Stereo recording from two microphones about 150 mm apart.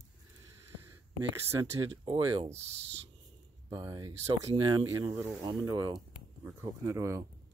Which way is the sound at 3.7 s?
25° right (ahead or behind).